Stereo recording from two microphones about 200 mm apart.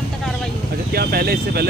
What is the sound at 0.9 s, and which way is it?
Vehicle, 50° right (ahead or behind).